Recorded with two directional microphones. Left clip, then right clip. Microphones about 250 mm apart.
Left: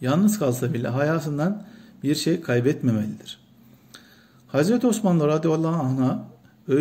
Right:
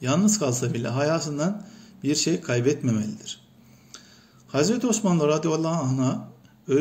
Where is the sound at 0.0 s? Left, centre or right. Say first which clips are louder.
Left 1 dB; left.